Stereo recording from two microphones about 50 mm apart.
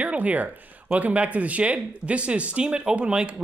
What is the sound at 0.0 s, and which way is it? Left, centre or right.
Speech, right.